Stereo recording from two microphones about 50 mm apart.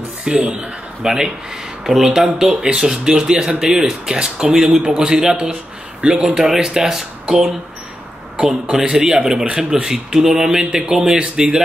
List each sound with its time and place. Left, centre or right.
0.2 s a man's voice: centre
8.4 s speech: right